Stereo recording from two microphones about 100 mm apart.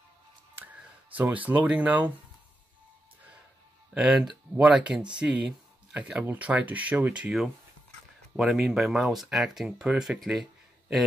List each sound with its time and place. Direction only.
1.1 s speech: 15° right (ahead or behind)
3.9 s speech: 5° right (ahead or behind)